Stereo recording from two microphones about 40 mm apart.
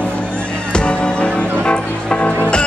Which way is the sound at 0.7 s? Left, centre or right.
Left.